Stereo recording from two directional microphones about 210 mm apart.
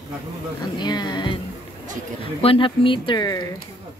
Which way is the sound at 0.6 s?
20° left (ahead or behind).